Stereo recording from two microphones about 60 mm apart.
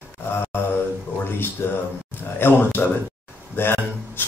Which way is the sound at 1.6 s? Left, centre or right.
Left.